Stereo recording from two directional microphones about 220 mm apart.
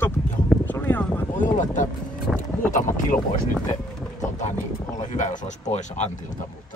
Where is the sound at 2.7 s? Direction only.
35° left (ahead or behind).